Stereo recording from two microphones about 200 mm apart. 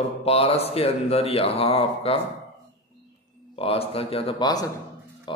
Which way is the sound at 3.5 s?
30° left (ahead or behind).